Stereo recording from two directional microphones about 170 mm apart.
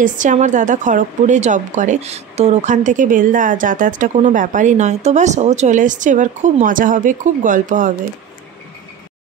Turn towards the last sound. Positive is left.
turn(degrees=-50)  # may be behind; listen again after turning